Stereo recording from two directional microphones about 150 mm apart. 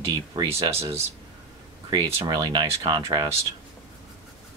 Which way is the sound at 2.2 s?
30° right (ahead or behind).